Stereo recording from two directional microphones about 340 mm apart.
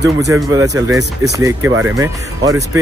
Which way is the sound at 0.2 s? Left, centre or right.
Centre.